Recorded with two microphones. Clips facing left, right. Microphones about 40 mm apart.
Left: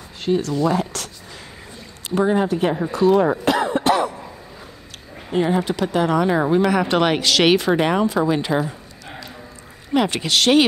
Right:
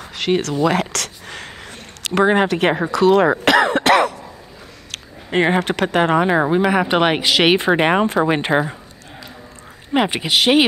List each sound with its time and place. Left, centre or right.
0.2 s speech: right
0.7 s a sound: right
2.0 s speech: right
4.9 s speech: right
6.0 s speech: right
7.6 s speech: right
9.9 s speech: centre